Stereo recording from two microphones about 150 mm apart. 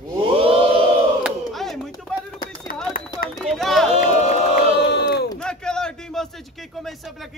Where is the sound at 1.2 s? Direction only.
Centre (ahead or behind).